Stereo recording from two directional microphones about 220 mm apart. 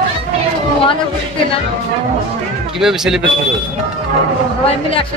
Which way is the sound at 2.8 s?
Centre (ahead or behind).